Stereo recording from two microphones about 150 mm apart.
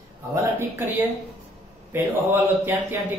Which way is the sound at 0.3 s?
15° right (ahead or behind).